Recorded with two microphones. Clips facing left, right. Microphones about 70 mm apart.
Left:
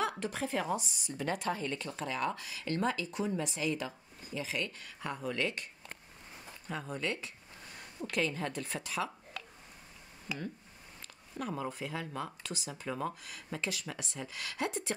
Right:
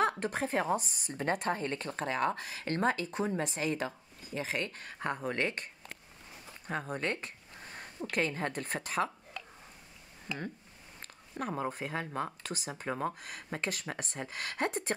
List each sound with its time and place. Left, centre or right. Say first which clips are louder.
0.2 s speech: right 3 dB; right
6.7 s a sound: right 2 dB; right
8.1 s speech: right 1 dB; right
10.3 s speech: right 1 dB; centre
11.0 s speech: right 2 dB; right